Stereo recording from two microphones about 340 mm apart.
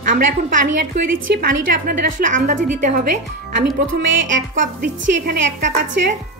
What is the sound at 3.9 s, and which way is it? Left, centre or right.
A woman's voice, right.